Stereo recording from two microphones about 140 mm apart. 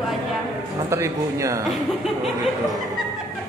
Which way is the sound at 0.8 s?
20° right (ahead or behind).